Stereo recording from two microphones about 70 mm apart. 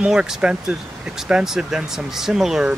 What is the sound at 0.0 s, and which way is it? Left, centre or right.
Speech, centre.